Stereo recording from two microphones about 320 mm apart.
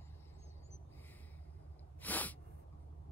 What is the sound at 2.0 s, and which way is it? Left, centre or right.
Sneeze, centre.